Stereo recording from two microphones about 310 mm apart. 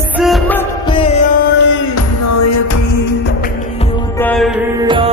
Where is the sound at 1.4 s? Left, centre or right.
Left.